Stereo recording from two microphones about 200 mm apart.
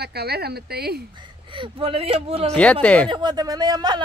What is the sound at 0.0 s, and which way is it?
Speech, 55° right (ahead or behind).